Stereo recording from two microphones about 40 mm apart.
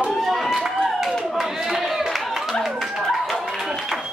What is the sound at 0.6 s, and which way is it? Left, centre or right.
Clapping, centre.